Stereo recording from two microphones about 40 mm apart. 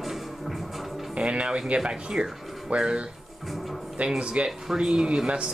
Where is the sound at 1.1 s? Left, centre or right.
Right.